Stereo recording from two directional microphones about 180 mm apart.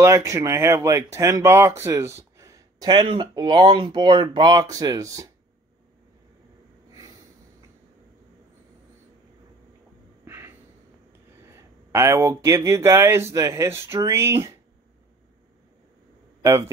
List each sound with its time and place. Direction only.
0.0 s speech: 15° right (ahead or behind)
10.2 s a sound: 15° right (ahead or behind)
11.5 s speech: 15° right (ahead or behind)
16.4 s speech: 15° right (ahead or behind)